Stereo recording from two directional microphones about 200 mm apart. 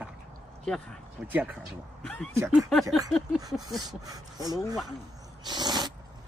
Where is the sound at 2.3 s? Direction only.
15° right (ahead or behind).